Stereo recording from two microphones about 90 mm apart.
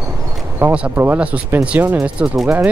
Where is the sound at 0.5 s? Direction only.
15° right (ahead or behind).